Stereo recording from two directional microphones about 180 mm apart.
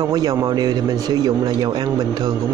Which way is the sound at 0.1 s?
20° right (ahead or behind).